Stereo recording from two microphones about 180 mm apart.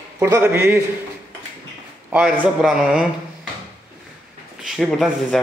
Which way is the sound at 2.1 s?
5° right (ahead or behind).